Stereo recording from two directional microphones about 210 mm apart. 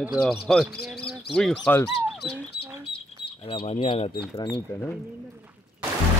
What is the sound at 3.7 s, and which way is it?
Speech, 25° left (ahead or behind).